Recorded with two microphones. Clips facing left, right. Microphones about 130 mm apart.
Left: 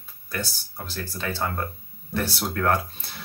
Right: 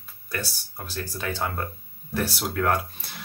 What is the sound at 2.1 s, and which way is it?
Speech, 10° right (ahead or behind).